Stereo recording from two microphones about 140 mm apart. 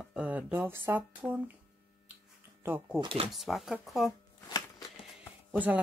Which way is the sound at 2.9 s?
40° right (ahead or behind).